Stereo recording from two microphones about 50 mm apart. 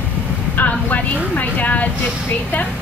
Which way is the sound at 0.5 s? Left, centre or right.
Left.